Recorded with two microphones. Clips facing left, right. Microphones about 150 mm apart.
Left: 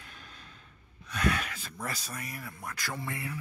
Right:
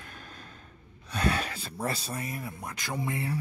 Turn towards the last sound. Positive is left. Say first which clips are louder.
# right 5 dB
turn(degrees=-20)  # may be behind; listen again after turning